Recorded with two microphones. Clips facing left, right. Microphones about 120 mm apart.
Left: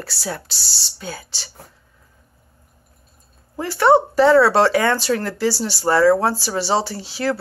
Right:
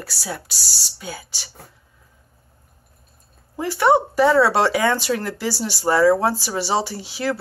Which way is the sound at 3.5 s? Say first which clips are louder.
Left 2 dB; 15° right (ahead or behind).